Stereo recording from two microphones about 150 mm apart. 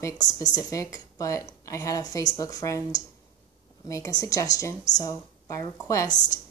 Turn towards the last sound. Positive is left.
turn(degrees=25)  # may be behind; listen again after turning